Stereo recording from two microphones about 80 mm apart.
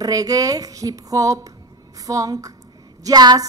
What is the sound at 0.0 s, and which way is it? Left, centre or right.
A woman's voice, right.